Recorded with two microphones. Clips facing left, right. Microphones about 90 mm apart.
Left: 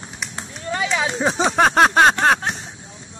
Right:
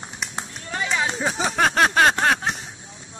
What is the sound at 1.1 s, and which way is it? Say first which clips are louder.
Speech: left 5 dB; 25° left (ahead or behind).